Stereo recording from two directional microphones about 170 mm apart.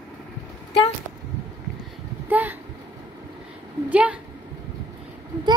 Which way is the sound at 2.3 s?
10° right (ahead or behind).